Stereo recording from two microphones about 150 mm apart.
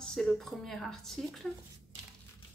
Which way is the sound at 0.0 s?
5° left (ahead or behind).